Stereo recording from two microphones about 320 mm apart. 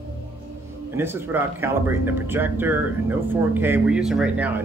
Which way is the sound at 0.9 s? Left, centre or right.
Centre.